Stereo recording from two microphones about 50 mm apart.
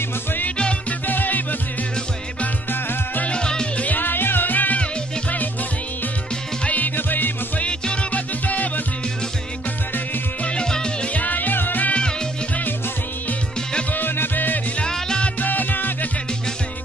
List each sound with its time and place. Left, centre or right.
0.6 s music: left
1.0 s music: left
2.7 s music: left
3.3 s music: centre
3.8 s music: left
6.6 s music: left
7.6 s music: left
10.4 s music: centre
11.1 s music: left
13.9 s music: left
14.8 s music: centre
15.4 s music: left